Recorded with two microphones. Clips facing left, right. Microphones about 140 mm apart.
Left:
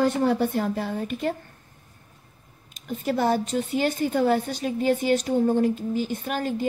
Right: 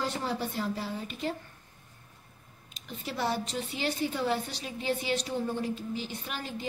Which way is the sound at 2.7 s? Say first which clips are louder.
Left 10 dB; 45° left (ahead or behind).